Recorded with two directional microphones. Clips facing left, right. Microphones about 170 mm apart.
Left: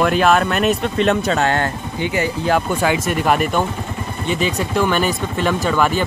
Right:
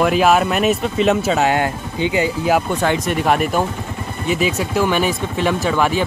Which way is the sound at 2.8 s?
5° left (ahead or behind).